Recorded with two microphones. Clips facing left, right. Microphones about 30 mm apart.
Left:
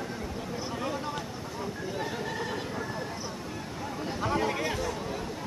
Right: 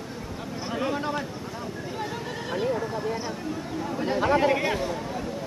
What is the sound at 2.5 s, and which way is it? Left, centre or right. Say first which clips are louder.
Neigh: right 7 dB; centre.